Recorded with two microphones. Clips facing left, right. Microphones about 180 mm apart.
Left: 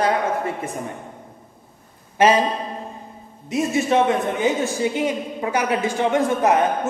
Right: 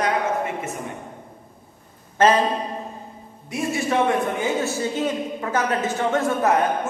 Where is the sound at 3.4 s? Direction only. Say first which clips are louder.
Left 4 dB; 20° left (ahead or behind).